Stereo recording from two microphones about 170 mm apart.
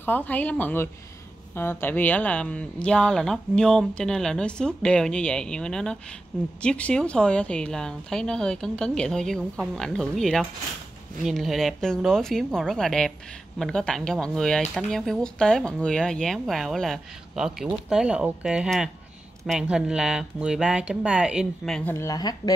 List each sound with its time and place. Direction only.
0.0 s speech: 10° left (ahead or behind)
21.9 s speech: 20° left (ahead or behind)